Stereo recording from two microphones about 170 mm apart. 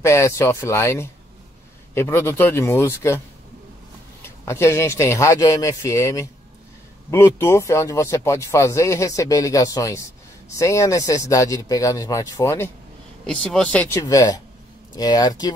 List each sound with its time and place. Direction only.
0.0 s speech: 15° left (ahead or behind)
4.2 s speech: 15° left (ahead or behind)
13.4 s speech: 5° left (ahead or behind)
13.9 s speech: 20° left (ahead or behind)